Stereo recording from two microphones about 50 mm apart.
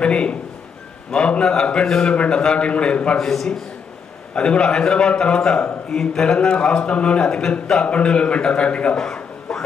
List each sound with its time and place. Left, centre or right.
0.0 s a man's voice: left
3.2 s a man's voice: centre
8.9 s a sound: centre